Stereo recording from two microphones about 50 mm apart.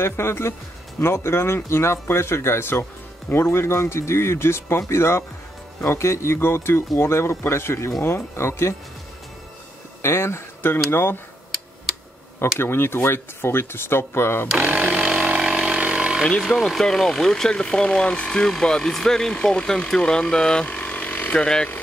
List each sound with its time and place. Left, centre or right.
0.0 s speech: left
5.9 s speech: left
10.0 s speech: left
12.5 s speech: left
14.9 s vehicle: centre
15.8 s a sound: right
16.4 s speech: centre
20.6 s a sound: left
21.4 s speech: centre